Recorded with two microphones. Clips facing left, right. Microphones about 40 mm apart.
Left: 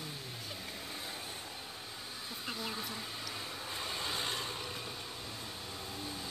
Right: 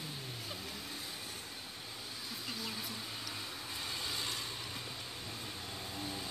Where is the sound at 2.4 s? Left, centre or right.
Left.